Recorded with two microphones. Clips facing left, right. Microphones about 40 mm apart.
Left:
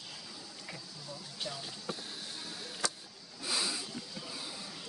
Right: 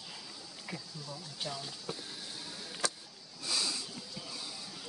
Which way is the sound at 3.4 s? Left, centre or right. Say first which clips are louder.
Left 1 dB; centre.